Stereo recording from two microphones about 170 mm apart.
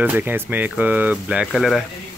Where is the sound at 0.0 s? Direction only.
10° right (ahead or behind).